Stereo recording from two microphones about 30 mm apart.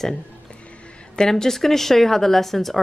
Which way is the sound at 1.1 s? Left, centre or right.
Centre.